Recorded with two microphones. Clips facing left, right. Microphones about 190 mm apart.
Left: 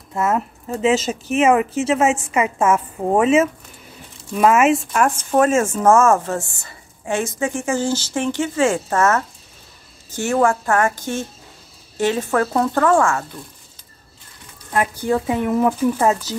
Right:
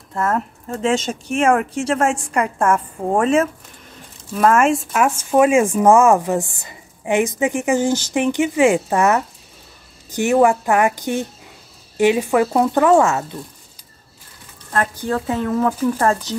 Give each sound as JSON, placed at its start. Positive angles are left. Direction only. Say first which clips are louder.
{"t": 0.1, "sound": "speech", "louder": "left 1 dB", "side_deg": 10}
{"t": 14.7, "sound": "speech", "louder": "left 2 dB", "side_deg": 10}